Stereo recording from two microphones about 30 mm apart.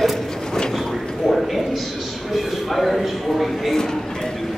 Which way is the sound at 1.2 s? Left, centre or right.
Centre.